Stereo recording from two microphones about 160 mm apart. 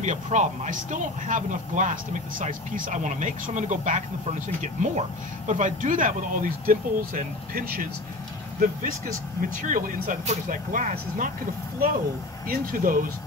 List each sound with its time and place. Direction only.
0.0 s speech: 50° right (ahead or behind)
12.4 s speech: 60° right (ahead or behind)